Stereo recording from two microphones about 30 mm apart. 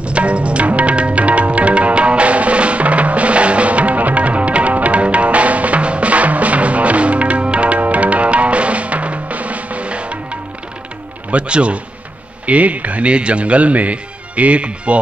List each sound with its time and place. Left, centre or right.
0.0 s music: right
7.8 s music: right
11.2 s speech: right
12.4 s speech: right